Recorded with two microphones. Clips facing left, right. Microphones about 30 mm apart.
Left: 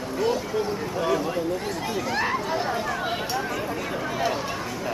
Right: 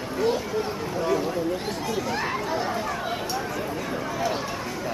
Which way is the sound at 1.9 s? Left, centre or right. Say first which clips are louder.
Left 2 dB; centre.